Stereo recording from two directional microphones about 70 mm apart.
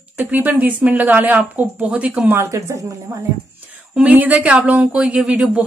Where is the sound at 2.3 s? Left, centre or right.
Right.